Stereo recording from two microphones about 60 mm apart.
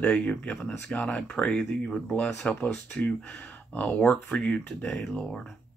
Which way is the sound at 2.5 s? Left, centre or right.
Left.